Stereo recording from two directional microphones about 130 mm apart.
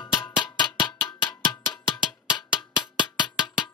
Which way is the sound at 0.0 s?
35° left (ahead or behind).